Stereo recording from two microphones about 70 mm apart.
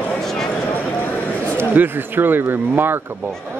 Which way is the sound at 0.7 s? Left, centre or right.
Left.